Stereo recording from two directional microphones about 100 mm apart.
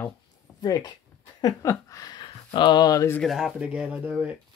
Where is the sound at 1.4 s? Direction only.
35° left (ahead or behind).